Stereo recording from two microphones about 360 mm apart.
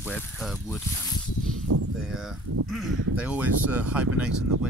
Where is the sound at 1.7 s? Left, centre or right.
Right.